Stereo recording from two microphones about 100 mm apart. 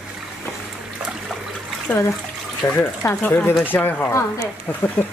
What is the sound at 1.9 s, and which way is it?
Speech, 15° left (ahead or behind).